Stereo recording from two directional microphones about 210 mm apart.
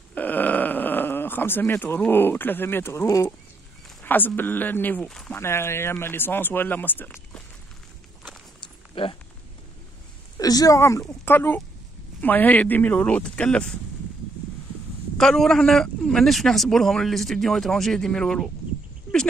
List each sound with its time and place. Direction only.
0.1 s speech: 10° left (ahead or behind)
8.5 s a sound: 25° left (ahead or behind)
10.3 s speech: 15° left (ahead or behind)
15.1 s a man's voice: centre (ahead or behind)